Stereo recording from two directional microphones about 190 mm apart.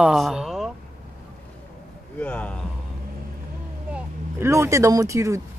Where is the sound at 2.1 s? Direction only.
5° left (ahead or behind).